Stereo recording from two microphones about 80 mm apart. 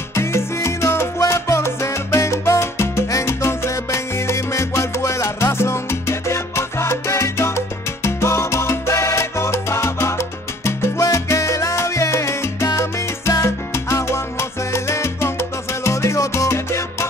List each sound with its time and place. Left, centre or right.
0.1 s salsa music: left